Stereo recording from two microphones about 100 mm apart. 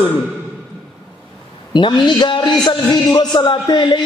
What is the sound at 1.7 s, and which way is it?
A man's voice, 50° left (ahead or behind).